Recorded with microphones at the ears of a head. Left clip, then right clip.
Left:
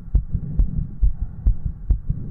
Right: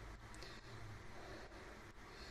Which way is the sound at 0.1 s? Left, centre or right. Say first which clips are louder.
Left 16 dB; left.